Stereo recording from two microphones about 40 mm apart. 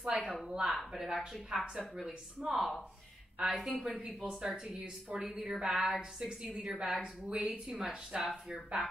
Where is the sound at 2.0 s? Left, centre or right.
Centre.